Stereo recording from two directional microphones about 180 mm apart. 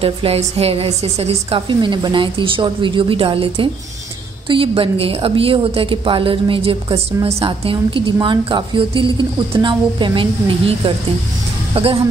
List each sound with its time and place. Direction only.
0.0 s a woman's voice: 30° right (ahead or behind)
11.7 s speech: 30° right (ahead or behind)